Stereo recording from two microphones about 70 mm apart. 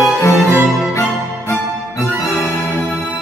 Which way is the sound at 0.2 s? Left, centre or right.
Left.